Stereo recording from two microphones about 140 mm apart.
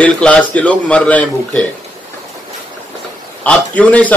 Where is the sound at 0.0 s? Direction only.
10° left (ahead or behind).